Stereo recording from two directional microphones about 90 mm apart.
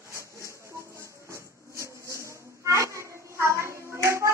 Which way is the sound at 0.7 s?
30° right (ahead or behind).